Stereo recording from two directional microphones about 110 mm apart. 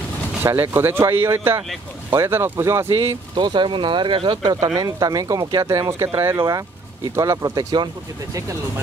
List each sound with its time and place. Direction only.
0.4 s speech: 25° right (ahead or behind)
3.0 s speech: 50° right (ahead or behind)